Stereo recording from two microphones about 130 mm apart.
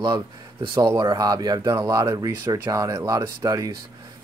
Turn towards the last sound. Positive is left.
turn(degrees=-25)  # may be behind; listen again after turning